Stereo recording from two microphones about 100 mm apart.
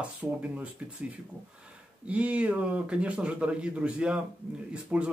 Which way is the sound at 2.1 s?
15° right (ahead or behind).